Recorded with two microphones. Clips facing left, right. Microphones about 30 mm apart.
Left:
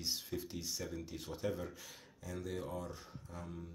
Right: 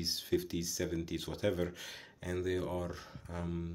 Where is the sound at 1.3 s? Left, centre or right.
Right.